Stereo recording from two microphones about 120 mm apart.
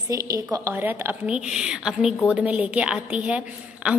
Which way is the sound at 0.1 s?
25° right (ahead or behind).